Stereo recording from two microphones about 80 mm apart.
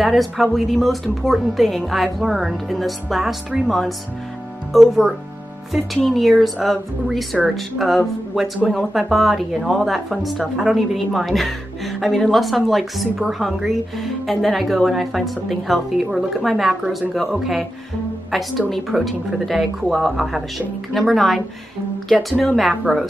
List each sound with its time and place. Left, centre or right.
0.0 s a woman's voice: centre
22.4 s a woman's voice: centre